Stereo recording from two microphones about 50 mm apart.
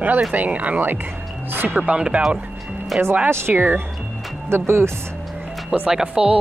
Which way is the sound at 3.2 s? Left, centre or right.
Right.